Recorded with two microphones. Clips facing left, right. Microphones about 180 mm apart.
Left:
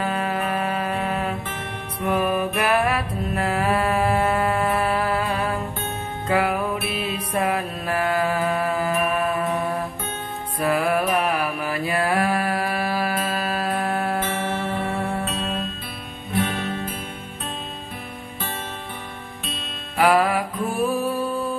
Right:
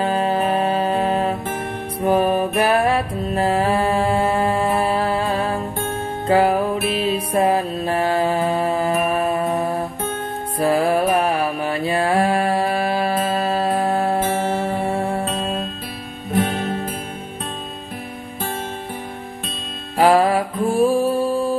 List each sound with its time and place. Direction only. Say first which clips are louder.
0.0 s music: right 5 dB; 30° right (ahead or behind)
10.6 s mantra: right 4 dB; 30° right (ahead or behind)
14.8 s music: right 4 dB; 25° right (ahead or behind)
16.3 s music: right 4 dB; 45° right (ahead or behind)
20.0 s music: right 4 dB; 30° right (ahead or behind)